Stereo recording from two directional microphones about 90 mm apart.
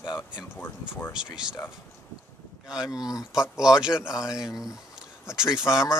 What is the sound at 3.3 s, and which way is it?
Speech, 5° right (ahead or behind).